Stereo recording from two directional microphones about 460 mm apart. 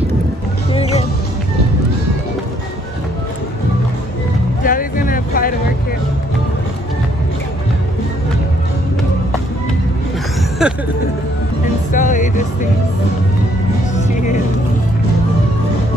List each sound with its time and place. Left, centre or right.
0.7 s music: centre
4.6 s a sound: centre
10.6 s music: centre
11.9 s music: centre
13.9 s music: centre